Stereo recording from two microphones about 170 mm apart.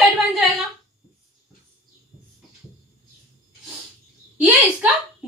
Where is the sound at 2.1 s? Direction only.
30° left (ahead or behind).